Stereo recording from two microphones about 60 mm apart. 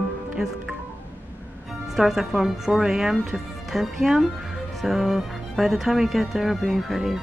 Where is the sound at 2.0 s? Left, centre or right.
Centre.